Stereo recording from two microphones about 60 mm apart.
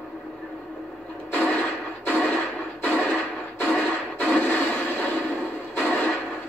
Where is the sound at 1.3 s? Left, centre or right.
Left.